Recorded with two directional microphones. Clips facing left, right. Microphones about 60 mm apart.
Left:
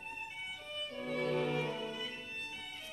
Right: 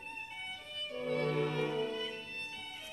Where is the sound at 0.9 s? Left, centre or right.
Centre.